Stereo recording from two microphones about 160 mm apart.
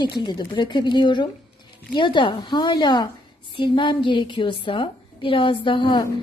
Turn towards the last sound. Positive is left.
turn(degrees=30)  # may be behind; listen again after turning